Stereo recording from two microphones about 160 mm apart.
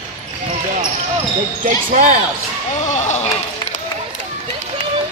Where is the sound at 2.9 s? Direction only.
45° left (ahead or behind).